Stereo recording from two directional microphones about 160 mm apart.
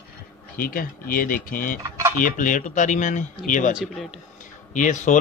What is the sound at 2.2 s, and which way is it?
Speech, 55° left (ahead or behind).